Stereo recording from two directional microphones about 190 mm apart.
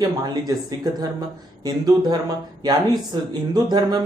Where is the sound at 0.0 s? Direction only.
20° right (ahead or behind).